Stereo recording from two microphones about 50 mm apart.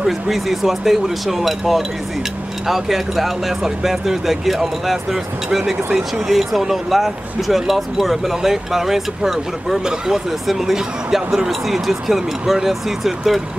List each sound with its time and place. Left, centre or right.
0.0 s speech: centre